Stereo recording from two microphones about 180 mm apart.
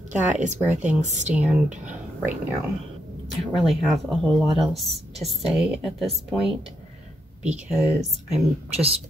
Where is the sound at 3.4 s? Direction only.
Centre (ahead or behind).